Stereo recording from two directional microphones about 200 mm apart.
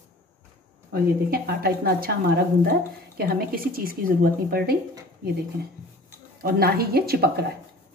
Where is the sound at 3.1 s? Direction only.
50° right (ahead or behind).